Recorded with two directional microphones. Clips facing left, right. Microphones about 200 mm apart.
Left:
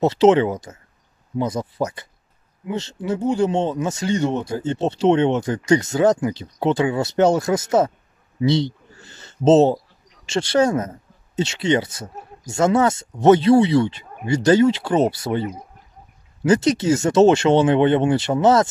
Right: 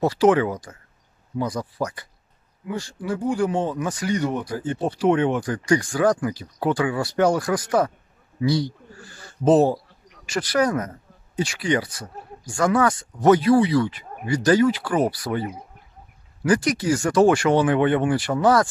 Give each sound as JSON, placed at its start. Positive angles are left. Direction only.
{"t": 0.0, "sound": "speech", "side_deg": 20}